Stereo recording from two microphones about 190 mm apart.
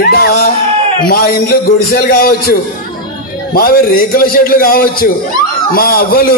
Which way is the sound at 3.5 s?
50° left (ahead or behind).